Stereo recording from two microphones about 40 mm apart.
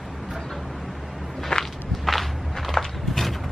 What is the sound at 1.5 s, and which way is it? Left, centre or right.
Walk, centre.